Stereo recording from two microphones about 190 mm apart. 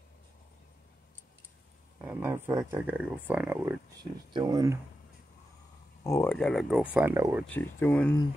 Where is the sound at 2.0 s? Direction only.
10° right (ahead or behind).